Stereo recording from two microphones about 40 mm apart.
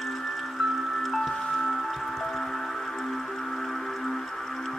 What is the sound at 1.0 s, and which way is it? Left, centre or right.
Music, centre.